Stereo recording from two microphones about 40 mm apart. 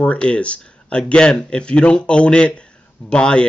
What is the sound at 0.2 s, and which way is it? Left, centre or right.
Speech, left.